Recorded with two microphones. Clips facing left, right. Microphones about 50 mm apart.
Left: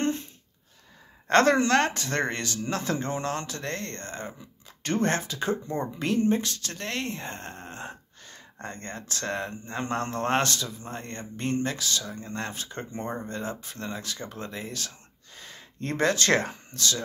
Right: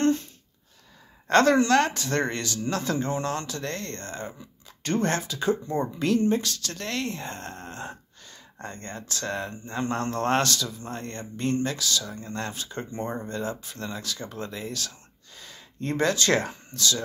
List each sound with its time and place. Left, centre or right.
1.2 s speech: left
8.3 s speech: left